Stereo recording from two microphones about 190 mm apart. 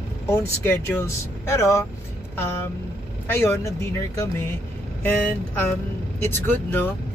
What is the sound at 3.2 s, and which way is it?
Speech, 15° left (ahead or behind).